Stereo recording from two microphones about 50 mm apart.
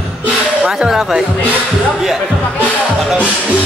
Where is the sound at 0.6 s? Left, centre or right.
Centre.